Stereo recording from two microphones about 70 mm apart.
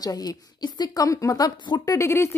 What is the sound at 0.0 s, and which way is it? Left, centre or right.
A woman's voice, left.